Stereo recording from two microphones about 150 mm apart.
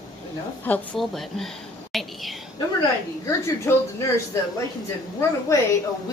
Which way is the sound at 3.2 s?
20° left (ahead or behind).